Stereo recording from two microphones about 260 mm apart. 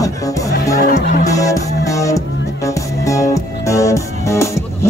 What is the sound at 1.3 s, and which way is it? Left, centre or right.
Music, centre.